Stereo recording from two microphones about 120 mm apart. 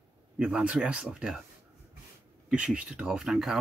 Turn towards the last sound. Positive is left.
turn(degrees=0)  # may be behind; listen again after turning